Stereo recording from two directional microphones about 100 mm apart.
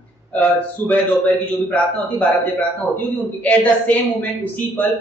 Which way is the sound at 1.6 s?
15° left (ahead or behind).